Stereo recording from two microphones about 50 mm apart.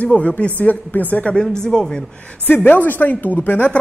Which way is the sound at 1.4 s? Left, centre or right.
Centre.